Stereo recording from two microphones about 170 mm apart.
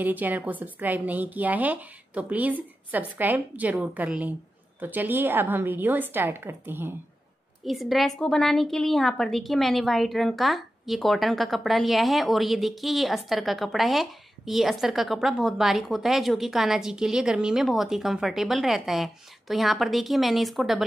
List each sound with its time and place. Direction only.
0.0 s speech: 10° right (ahead or behind)
7.6 s a woman's voice: centre (ahead or behind)